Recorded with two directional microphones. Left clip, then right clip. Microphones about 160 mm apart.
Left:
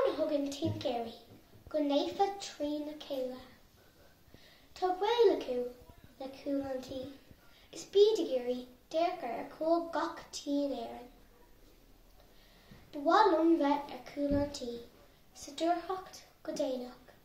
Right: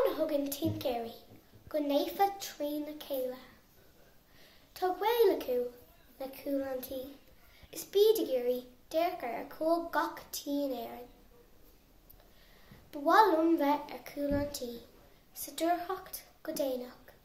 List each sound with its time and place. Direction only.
0.0 s a child's voice: 10° right (ahead or behind)
4.7 s a child's voice: 10° right (ahead or behind)
12.9 s a child's voice: 10° right (ahead or behind)